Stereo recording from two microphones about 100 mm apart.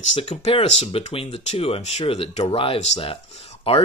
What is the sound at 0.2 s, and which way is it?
Speech, 75° left (ahead or behind).